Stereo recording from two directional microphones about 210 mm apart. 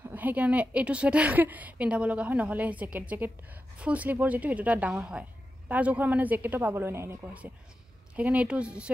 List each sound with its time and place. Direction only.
0.1 s a woman's voice: 10° right (ahead or behind)